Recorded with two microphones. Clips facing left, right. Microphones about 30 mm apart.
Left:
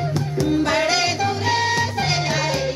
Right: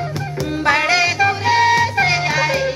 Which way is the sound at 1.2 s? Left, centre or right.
Centre.